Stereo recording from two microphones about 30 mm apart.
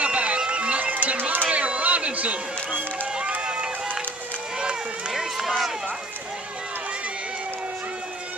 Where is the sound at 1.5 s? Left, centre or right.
Right.